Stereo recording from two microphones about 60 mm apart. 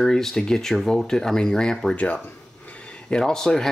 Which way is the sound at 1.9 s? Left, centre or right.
Left.